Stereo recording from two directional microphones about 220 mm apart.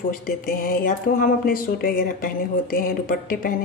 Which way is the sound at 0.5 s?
40° left (ahead or behind).